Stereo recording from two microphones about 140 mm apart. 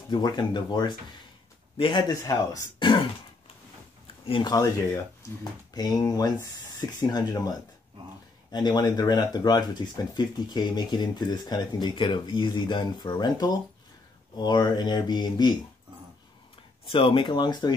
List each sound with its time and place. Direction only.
0.1 s speech: 30° left (ahead or behind)
4.3 s speech: 30° left (ahead or behind)
16.8 s speech: 40° left (ahead or behind)